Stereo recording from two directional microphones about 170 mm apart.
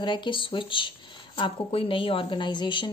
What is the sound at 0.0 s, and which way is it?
A woman's voice, 30° left (ahead or behind).